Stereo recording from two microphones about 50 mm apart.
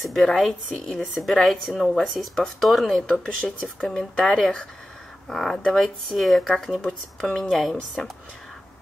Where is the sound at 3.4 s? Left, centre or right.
Centre.